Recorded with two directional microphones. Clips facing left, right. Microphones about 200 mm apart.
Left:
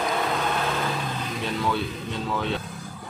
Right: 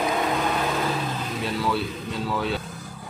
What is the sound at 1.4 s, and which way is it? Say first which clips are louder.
Speech: right 1 dB; centre (ahead or behind).